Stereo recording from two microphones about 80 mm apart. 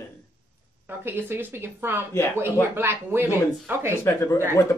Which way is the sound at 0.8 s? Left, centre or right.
Right.